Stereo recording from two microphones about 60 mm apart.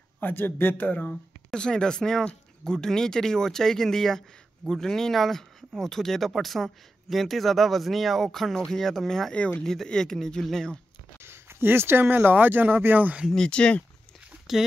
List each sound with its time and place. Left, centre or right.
0.2 s speech: left
1.5 s speech: centre
9.3 s speech: centre
9.7 s speech: centre
11.1 s speech: right
13.3 s speech: centre
14.5 s speech: centre